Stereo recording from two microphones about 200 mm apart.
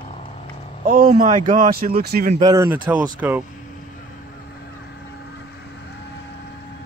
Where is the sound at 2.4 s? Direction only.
15° right (ahead or behind).